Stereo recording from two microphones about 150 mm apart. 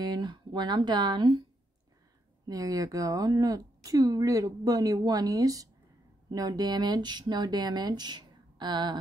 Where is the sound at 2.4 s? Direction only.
25° right (ahead or behind).